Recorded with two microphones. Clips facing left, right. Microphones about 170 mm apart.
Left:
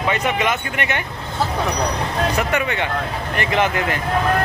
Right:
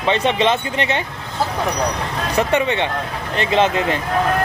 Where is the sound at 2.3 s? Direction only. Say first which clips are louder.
Right 3 dB; 25° right (ahead or behind).